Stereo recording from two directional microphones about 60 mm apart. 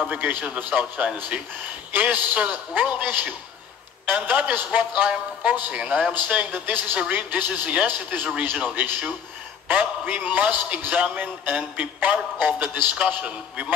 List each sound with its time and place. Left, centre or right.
0.1 s a man's voice: right
9.7 s a man's voice: right